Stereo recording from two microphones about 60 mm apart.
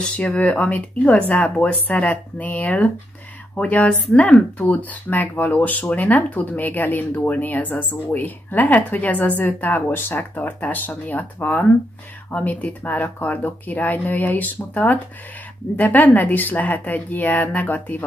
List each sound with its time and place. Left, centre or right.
0.0 s speech: centre